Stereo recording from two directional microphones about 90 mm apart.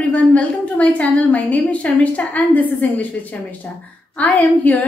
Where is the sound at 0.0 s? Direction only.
15° left (ahead or behind).